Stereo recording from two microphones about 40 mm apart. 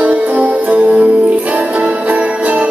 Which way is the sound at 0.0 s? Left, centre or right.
Right.